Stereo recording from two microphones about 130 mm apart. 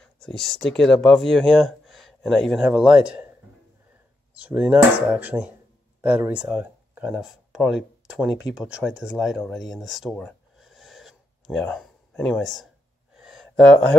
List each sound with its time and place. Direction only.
0.0 s speech: 5° left (ahead or behind)
4.4 s speech: 10° right (ahead or behind)
13.2 s a sound: centre (ahead or behind)